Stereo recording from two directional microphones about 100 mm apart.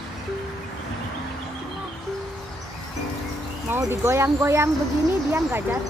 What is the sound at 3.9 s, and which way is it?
Speech, 25° right (ahead or behind).